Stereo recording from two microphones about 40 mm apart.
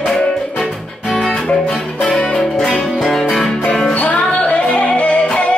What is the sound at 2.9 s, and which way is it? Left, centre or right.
Music, centre.